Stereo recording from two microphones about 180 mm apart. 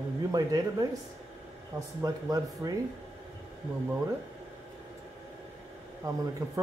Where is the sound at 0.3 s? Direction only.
20° right (ahead or behind).